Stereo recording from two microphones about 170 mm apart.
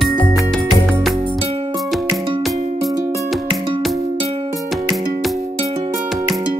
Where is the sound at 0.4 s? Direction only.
Centre (ahead or behind).